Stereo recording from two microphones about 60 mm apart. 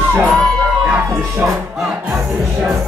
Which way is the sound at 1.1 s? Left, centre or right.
Right.